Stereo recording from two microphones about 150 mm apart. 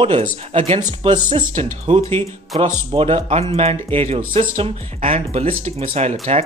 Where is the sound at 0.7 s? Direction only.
30° right (ahead or behind).